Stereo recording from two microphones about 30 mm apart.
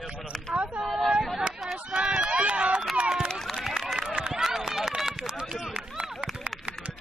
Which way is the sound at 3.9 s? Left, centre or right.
Right.